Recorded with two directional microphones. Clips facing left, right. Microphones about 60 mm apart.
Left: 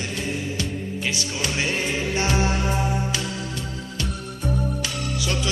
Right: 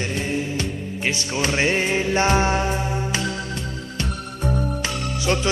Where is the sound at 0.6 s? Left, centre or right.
Right.